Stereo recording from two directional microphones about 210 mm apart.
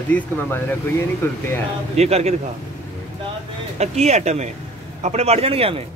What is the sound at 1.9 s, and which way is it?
Speech, 30° right (ahead or behind).